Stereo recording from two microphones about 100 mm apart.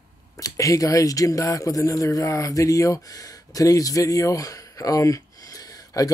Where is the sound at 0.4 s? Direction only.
35° left (ahead or behind).